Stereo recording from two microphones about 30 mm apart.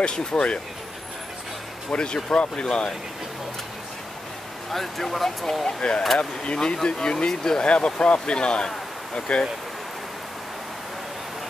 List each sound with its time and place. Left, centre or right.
0.0 s speech: left
1.9 s speech: left
4.6 s speech: centre
5.8 s speech: left
7.6 s speech: left